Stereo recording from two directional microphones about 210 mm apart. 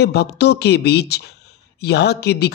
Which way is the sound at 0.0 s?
50° left (ahead or behind).